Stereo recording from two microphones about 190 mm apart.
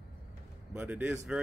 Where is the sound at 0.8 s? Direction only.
10° right (ahead or behind).